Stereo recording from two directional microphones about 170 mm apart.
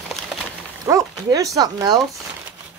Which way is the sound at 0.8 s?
20° right (ahead or behind).